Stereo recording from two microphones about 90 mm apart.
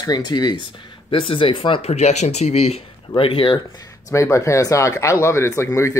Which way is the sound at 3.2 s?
85° left.